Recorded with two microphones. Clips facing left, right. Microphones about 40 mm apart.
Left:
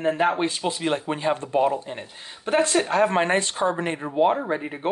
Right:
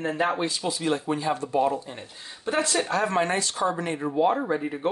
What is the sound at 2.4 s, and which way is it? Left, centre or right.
Speech, left.